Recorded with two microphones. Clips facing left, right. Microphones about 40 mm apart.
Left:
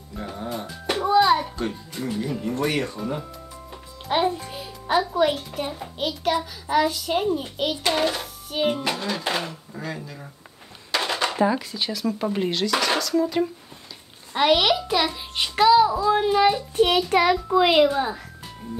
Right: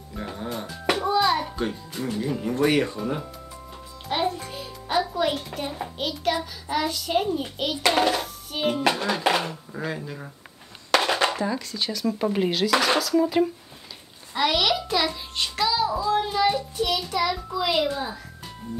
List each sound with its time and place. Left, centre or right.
0.3 s a child's voice: centre
1.0 s music: centre
1.6 s a child's voice: centre
4.1 s music: centre
5.2 s a child's voice: centre
7.9 s speech: centre
8.2 s music: centre
8.8 s speech: right
11.3 s a child's voice: centre
14.3 s a child's voice: left
16.1 s child singing: centre
16.7 s a child's voice: left